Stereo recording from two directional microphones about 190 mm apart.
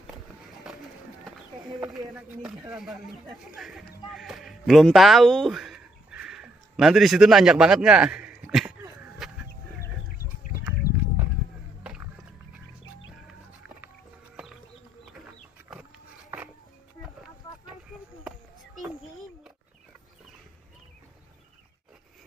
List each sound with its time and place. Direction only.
2.7 s speech: centre (ahead or behind)
9.2 s chicken: centre (ahead or behind)
10.8 s horse: 55° left (ahead or behind)